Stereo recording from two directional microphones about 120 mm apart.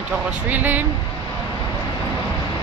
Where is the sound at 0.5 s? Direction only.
15° right (ahead or behind).